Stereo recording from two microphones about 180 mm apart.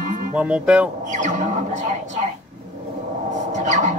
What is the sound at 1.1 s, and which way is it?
Music, 45° right (ahead or behind).